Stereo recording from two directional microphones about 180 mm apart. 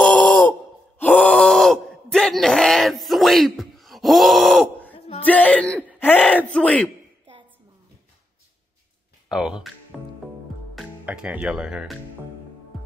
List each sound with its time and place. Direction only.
0.3 s sigh: 25° left (ahead or behind)
0.9 s groan: 10° left (ahead or behind)
4.9 s a sound: 30° left (ahead or behind)
5.2 s speech: 10° left (ahead or behind)
9.3 s speech: 5° right (ahead or behind)
10.7 s speech: 5° right (ahead or behind)